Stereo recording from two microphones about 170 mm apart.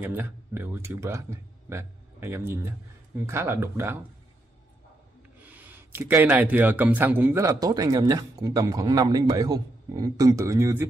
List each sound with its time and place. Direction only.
0.0 s a man's voice: 10° right (ahead or behind)
5.4 s a man's voice: 10° right (ahead or behind)